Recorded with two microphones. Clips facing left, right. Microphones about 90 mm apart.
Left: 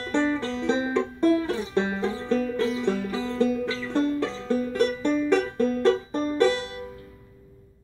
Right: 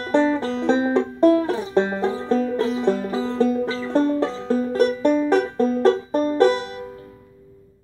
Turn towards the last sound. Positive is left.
turn(degrees=-40)  # may be behind; listen again after turning